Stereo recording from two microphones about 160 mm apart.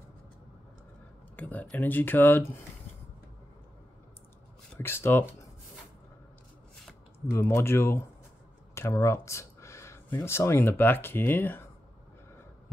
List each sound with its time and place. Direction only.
1.3 s speech: 10° left (ahead or behind)
4.7 s speech: 15° left (ahead or behind)
7.2 s speech: 15° left (ahead or behind)